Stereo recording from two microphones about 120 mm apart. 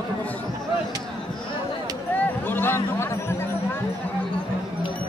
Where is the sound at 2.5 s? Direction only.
20° left (ahead or behind).